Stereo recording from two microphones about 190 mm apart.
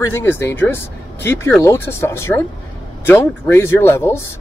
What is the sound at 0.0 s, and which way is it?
Speech, 15° left (ahead or behind).